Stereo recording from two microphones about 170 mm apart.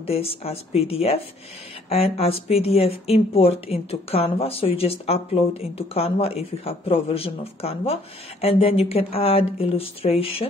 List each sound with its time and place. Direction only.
0.0 s speech: 35° left (ahead or behind)